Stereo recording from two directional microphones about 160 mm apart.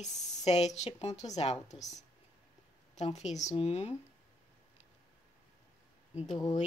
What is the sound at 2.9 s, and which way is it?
A woman's voice, 40° left (ahead or behind).